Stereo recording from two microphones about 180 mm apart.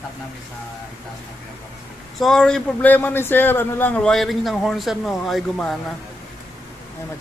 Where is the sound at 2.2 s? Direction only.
5° left (ahead or behind).